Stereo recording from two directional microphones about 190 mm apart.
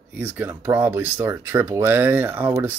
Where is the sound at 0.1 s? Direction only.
10° right (ahead or behind).